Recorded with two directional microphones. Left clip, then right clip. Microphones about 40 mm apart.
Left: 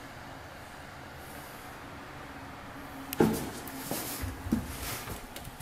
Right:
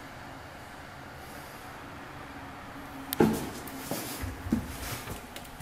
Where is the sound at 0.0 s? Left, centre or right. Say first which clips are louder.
Right 1 dB; centre.